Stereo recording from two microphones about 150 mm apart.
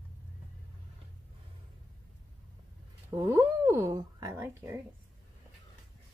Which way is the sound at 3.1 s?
20° right (ahead or behind).